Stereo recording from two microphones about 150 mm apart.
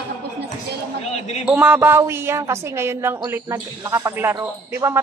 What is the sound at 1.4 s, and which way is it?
A woman's voice, 10° right (ahead or behind).